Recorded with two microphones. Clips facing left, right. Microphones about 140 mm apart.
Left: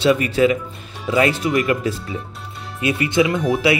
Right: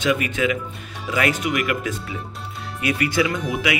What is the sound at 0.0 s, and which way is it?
Speech, 35° left (ahead or behind).